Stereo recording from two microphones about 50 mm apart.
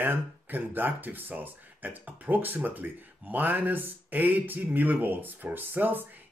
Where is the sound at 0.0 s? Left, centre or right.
Right.